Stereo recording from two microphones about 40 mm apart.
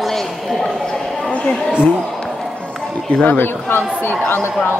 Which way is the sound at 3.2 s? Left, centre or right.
Left.